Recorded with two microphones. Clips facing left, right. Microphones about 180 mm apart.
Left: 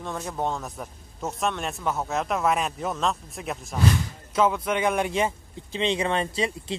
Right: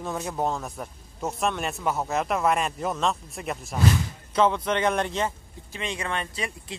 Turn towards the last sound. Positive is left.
turn(degrees=25)  # may be behind; listen again after turning